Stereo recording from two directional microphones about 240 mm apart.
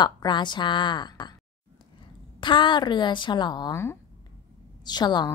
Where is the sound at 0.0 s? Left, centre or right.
Centre.